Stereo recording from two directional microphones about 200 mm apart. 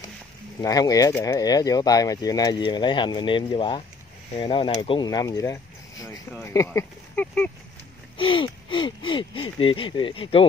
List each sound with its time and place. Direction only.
0.6 s speech: 20° left (ahead or behind)
8.2 s speech: 25° left (ahead or behind)